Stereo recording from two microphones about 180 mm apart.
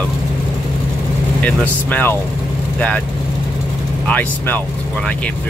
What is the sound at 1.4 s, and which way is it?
Speech, 10° left (ahead or behind).